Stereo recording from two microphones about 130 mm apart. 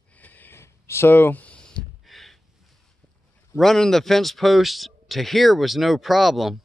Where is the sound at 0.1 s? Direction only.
10° left (ahead or behind).